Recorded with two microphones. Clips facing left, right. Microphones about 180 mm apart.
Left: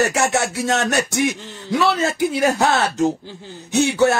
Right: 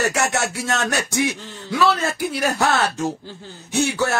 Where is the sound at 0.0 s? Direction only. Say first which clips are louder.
Left 3 dB; 20° left (ahead or behind).